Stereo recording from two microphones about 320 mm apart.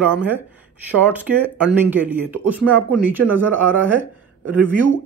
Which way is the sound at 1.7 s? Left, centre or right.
Centre.